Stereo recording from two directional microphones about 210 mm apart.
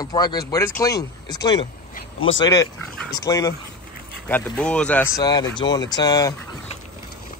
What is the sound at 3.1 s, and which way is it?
Speech, 15° left (ahead or behind).